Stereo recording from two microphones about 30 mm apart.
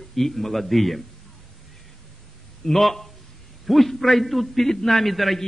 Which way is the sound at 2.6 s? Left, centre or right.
Centre.